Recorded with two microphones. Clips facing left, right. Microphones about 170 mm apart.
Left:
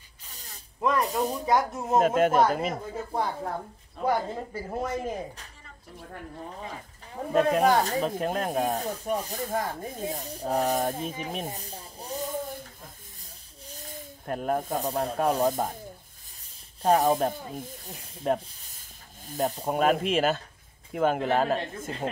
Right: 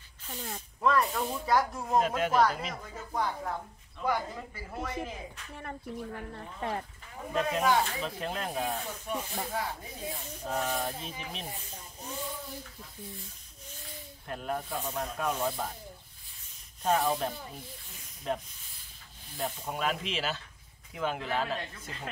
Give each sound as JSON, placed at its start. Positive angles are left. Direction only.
{"t": 0.7, "sound": "snake", "side_deg": 20}
{"t": 1.4, "sound": "speech", "side_deg": 20}
{"t": 2.0, "sound": "speech", "side_deg": 50}
{"t": 3.1, "sound": "speech", "side_deg": 35}
{"t": 6.6, "sound": "speech", "side_deg": -65}
{"t": 7.3, "sound": "speech", "side_deg": 50}
{"t": 11.3, "sound": "rub", "side_deg": 45}
{"t": 13.7, "sound": "snake", "side_deg": 40}
{"t": 15.2, "sound": "speech", "side_deg": 40}
{"t": 16.8, "sound": "speech", "side_deg": 40}
{"t": 19.7, "sound": "speech", "side_deg": 50}